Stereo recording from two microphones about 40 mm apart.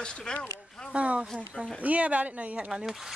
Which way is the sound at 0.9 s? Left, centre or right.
Right.